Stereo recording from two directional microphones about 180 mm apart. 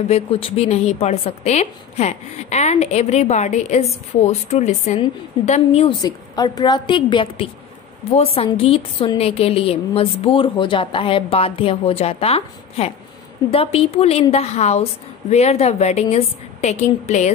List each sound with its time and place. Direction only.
0.1 s a woman's voice: 30° left (ahead or behind)
6.0 s a woman's voice: 20° left (ahead or behind); by 17.3 s 40° left (ahead or behind)